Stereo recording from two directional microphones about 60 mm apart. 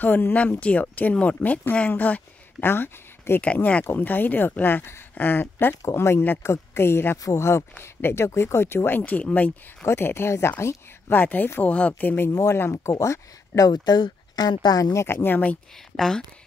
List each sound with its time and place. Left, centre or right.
0.3 s speech: left
2.6 s speech: left
3.3 s speech: left
5.8 s a woman's voice: left
9.8 s a woman's voice: left
11.1 s speech: left
12.4 s a woman's voice: left
12.9 s speech: left
14.3 s speech: left
15.0 s speech: left